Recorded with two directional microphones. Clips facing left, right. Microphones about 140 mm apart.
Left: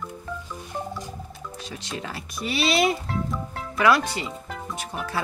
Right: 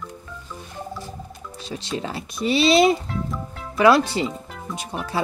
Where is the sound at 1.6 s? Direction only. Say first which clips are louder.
Right 7 dB; 30° right (ahead or behind).